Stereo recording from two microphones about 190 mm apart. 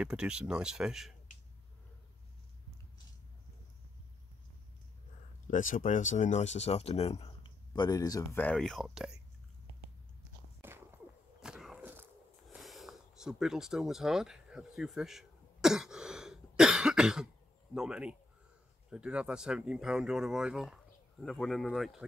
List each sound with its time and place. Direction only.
0.0 s speech: 5° right (ahead or behind)
5.5 s speech: 45° left (ahead or behind); by 9.2 s 5° right (ahead or behind)
10.6 s a sound: 10° right (ahead or behind)
17.7 s speech: 5° right (ahead or behind)